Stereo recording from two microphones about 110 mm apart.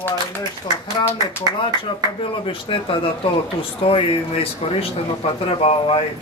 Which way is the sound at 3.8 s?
60° left (ahead or behind).